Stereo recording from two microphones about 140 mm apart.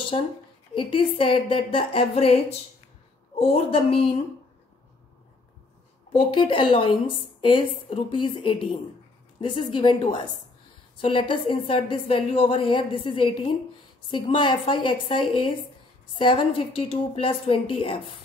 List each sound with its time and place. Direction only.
0.1 s a woman's voice: 40° left (ahead or behind)
6.1 s a woman's voice: 35° left (ahead or behind)